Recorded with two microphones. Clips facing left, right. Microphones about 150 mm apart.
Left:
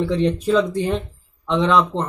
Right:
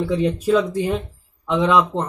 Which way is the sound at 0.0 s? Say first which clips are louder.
Left 1 dB; 5° right (ahead or behind).